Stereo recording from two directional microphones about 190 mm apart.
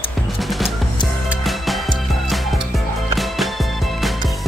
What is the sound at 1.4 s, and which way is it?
Music, centre (ahead or behind).